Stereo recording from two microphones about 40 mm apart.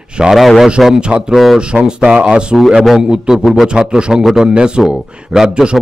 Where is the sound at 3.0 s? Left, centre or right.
Centre.